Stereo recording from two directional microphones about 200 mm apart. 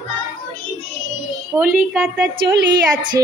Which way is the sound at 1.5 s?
10° right (ahead or behind).